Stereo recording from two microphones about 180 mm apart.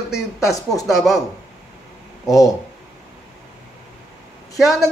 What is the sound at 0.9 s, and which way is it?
Speech, centre (ahead or behind).